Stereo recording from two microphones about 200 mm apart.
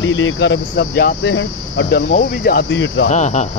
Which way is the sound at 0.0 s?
75° left (ahead or behind).